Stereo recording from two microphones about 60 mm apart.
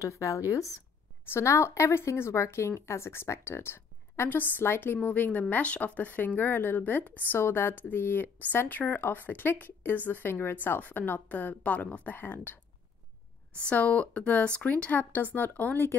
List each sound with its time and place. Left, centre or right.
0.0 s a woman's voice: left
7.3 s a woman's voice: left
13.6 s speech: left